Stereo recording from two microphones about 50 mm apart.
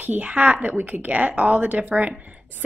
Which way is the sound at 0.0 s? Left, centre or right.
Right.